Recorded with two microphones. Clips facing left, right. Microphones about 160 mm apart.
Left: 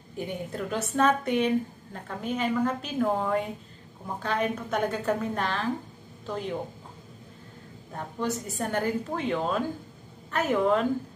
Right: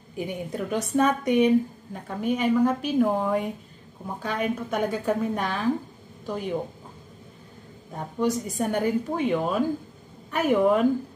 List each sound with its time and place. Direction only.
0.2 s a woman's voice: 10° right (ahead or behind)
8.2 s a woman's voice: 15° right (ahead or behind)